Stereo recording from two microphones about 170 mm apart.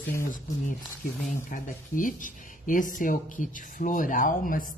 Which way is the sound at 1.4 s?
50° left (ahead or behind).